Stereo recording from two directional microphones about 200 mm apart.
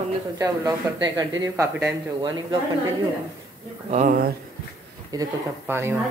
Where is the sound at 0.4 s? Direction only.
20° right (ahead or behind).